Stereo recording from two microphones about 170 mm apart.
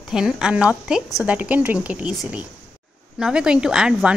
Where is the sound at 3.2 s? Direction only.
5° right (ahead or behind).